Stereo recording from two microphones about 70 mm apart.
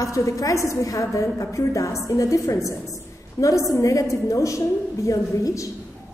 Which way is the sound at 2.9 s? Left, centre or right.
Left.